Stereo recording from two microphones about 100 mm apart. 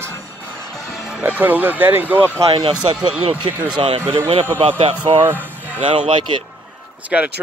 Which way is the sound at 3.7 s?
65° right (ahead or behind).